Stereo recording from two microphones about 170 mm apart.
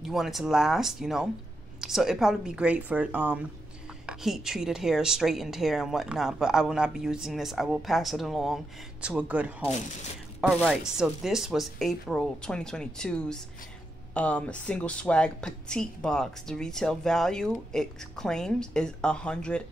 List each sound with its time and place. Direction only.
0.1 s a woman's voice: centre (ahead or behind)